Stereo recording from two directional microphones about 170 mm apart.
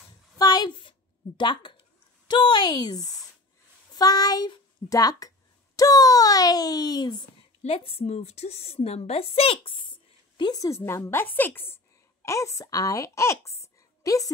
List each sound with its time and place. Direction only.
0.4 s a sound: 25° left (ahead or behind)
3.9 s a child's voice: 20° left (ahead or behind)
7.6 s a woman's voice: 35° left (ahead or behind); by 14.3 s 20° left (ahead or behind)